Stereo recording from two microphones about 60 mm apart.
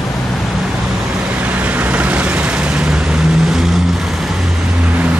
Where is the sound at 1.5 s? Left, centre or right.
Right; by 3.8 s centre.